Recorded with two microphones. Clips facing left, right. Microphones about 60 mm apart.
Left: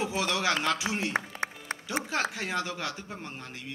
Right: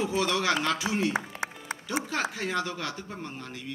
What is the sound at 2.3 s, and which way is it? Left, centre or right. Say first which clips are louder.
Speech: right 2 dB; centre.